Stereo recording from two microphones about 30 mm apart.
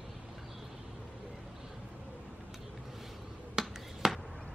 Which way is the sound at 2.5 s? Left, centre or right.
Centre.